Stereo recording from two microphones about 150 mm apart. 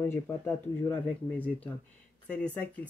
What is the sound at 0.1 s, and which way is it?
Speech, 15° left (ahead or behind).